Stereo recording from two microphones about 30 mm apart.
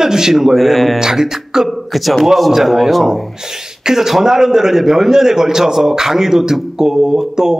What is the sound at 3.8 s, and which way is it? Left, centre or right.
A man's voice, centre.